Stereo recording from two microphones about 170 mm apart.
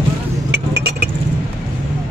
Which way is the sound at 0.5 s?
70° right (ahead or behind).